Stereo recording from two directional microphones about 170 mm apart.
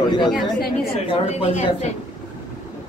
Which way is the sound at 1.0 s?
40° left (ahead or behind).